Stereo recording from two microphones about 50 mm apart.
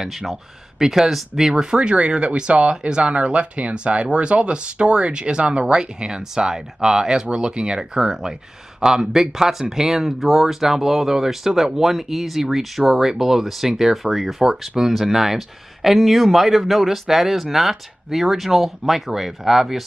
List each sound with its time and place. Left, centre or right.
0.7 s speech: centre